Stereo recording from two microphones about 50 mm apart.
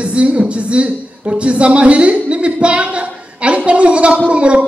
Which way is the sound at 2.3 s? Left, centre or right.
Right.